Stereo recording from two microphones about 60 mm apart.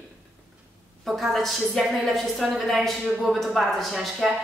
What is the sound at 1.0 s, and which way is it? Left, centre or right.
A woman's voice, centre.